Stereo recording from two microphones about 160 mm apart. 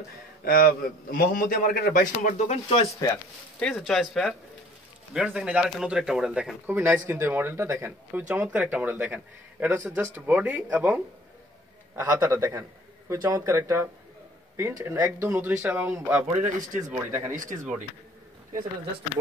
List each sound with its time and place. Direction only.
0.5 s a man's voice: 65° left (ahead or behind); by 2.9 s 40° left (ahead or behind)
3.5 s speech: 5° left (ahead or behind); by 17.3 s 15° right (ahead or behind)
17.3 s speech: 55° right (ahead or behind)